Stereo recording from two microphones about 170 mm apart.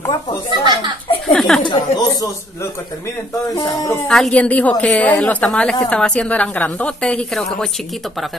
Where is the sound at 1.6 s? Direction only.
25° left (ahead or behind).